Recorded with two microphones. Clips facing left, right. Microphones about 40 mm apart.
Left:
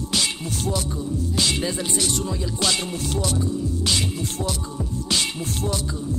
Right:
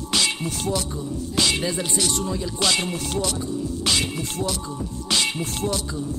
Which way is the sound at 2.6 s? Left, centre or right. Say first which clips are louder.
Right 2 dB; right.